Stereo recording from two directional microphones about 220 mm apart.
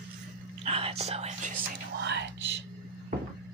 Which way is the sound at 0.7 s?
25° right (ahead or behind).